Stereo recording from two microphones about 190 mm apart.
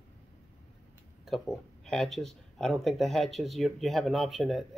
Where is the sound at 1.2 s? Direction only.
Centre (ahead or behind).